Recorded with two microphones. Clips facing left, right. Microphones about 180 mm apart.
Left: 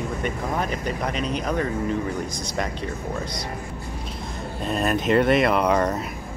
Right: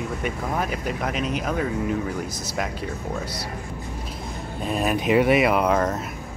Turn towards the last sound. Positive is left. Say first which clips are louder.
# even
turn(degrees=0)  # may be behind; listen again after turning